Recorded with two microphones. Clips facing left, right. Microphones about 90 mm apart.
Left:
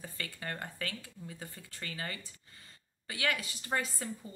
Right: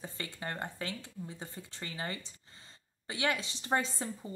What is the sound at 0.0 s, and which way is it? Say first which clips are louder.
Speech: right 1 dB; 25° right (ahead or behind).